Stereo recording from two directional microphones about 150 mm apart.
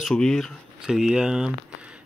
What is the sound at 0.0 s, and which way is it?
Speech, 5° left (ahead or behind).